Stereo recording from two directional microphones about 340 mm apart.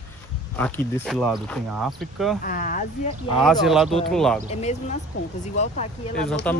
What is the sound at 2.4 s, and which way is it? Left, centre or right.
Speech, left.